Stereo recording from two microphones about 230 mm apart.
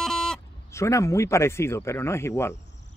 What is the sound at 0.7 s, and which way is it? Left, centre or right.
Speech, centre.